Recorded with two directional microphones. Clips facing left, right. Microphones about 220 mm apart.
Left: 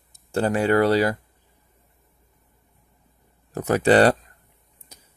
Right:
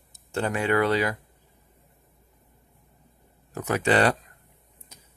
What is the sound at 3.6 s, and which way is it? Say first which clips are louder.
Speech: left 6 dB; 35° left (ahead or behind).